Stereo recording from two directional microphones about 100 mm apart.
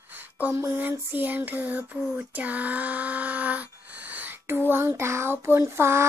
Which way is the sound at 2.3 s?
15° right (ahead or behind).